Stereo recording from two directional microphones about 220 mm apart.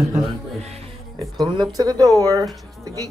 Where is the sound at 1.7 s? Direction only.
15° right (ahead or behind).